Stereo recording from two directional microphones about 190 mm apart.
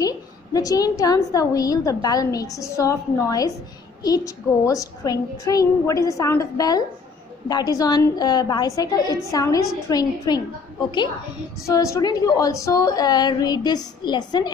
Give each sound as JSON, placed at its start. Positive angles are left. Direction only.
{"t": 0.0, "sound": "a woman's voice", "side_deg": 20}
{"t": 11.6, "sound": "a woman's voice", "side_deg": 15}